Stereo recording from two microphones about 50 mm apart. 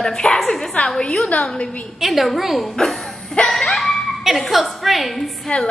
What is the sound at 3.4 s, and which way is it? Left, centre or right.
Laughter, left.